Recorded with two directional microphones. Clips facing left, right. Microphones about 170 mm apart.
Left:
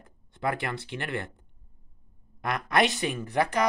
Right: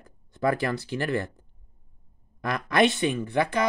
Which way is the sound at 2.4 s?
30° right (ahead or behind).